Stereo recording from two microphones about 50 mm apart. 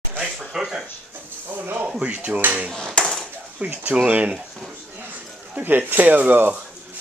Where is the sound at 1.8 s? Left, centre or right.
Right.